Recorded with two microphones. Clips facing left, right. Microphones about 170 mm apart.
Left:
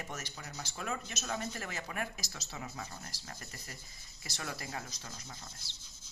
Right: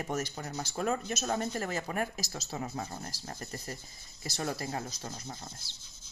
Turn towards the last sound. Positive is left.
turn(degrees=-35)  # may be behind; listen again after turning